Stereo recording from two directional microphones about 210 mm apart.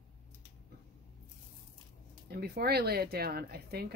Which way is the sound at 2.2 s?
50° right (ahead or behind).